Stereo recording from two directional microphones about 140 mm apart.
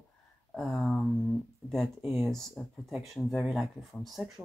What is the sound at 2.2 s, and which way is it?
Speech, centre (ahead or behind).